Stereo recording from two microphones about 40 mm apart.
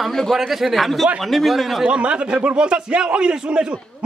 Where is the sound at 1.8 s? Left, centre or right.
Right.